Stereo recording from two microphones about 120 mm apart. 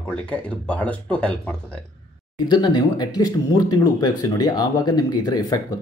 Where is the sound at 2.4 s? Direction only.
35° left (ahead or behind).